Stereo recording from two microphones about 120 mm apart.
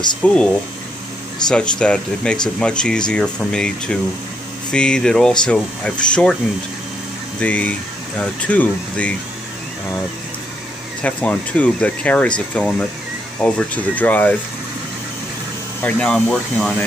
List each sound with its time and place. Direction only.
0.2 s speech: 10° left (ahead or behind)
1.5 s speech: 10° left (ahead or behind)
7.3 s speech: 10° left (ahead or behind)
11.0 s speech: 10° left (ahead or behind)
15.8 s speech: 5° left (ahead or behind)